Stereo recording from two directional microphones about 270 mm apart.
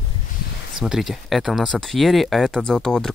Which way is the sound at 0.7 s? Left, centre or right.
Centre.